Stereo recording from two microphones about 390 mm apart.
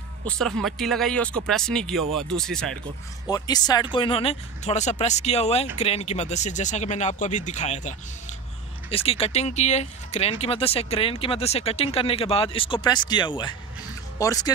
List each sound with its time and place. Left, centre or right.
0.4 s speech: centre
8.9 s speech: centre